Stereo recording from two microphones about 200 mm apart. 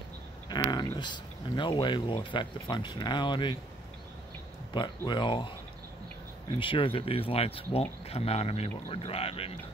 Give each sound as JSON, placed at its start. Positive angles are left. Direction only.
{"t": 0.7, "sound": "speech", "side_deg": 20}
{"t": 4.7, "sound": "speech", "side_deg": 25}
{"t": 6.6, "sound": "speech", "side_deg": 25}